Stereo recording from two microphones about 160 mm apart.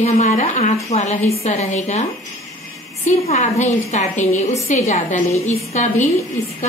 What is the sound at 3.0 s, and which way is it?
A woman's voice, 45° left (ahead or behind).